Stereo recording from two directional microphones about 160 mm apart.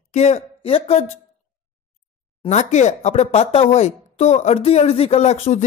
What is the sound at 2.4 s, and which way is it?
Speech, 45° left (ahead or behind).